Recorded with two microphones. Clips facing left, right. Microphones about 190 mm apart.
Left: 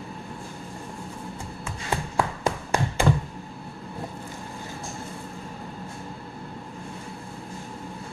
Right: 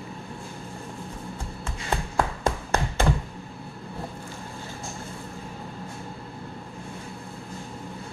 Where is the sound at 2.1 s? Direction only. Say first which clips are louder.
Even; 10° left (ahead or behind).